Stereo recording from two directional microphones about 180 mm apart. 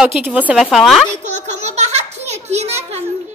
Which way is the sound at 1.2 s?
40° right (ahead or behind).